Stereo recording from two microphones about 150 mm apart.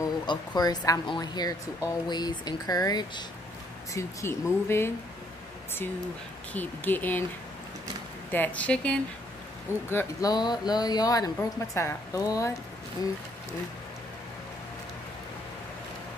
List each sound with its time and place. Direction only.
0.0 s speech: 25° left (ahead or behind)
6.5 s speech: 10° left (ahead or behind)
8.3 s speech: 10° left (ahead or behind)
9.8 s speech: 20° left (ahead or behind)